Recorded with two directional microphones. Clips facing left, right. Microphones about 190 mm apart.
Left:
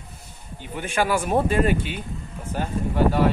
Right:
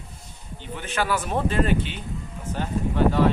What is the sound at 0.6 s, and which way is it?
A man's voice, 10° left (ahead or behind).